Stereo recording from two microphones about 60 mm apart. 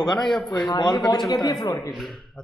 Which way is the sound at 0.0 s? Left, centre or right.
Centre.